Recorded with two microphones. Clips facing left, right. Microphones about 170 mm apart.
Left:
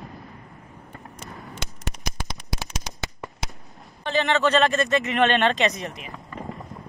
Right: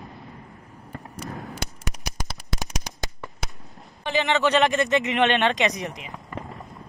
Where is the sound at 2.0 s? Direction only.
15° right (ahead or behind).